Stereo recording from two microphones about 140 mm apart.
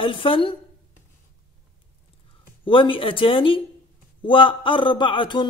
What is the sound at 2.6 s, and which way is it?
Speech, 35° left (ahead or behind).